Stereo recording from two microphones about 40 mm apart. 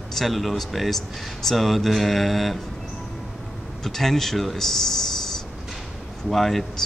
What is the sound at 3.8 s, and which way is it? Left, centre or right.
Speech, centre.